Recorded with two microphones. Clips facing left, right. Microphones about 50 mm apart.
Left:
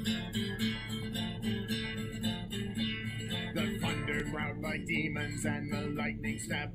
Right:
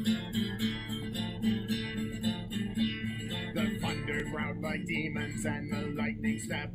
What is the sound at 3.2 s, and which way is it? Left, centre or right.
Music, centre.